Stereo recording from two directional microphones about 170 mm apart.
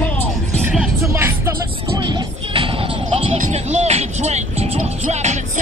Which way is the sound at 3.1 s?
35° right (ahead or behind).